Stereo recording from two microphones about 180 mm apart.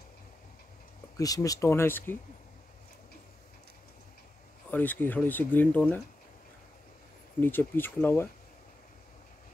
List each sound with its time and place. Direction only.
1.1 s speech: 20° left (ahead or behind)
4.6 s speech: 10° left (ahead or behind)
7.3 s speech: 10° left (ahead or behind)